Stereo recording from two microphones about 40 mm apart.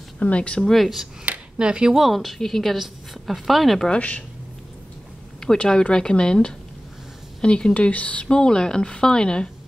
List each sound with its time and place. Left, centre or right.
0.2 s speech: left
0.6 s speech: centre
1.3 s a sound: right
1.6 s speech: right
2.0 s a woman's voice: centre
3.9 s speech: left
5.6 s a woman's voice: left
7.7 s speech: left
8.3 s a woman's voice: centre